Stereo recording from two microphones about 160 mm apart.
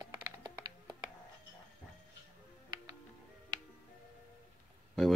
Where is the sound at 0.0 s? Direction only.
25° right (ahead or behind).